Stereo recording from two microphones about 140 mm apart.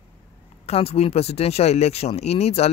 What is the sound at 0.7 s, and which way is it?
Speech, 45° left (ahead or behind).